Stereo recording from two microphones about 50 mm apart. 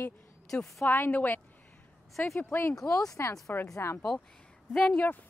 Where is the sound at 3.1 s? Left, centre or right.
Left.